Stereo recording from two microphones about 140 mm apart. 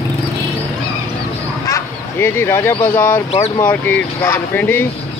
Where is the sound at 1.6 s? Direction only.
20° left (ahead or behind).